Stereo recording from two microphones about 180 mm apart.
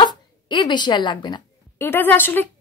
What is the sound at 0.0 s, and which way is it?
Speech, 25° left (ahead or behind).